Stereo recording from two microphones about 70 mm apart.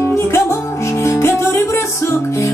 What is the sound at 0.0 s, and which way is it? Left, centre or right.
Music, left.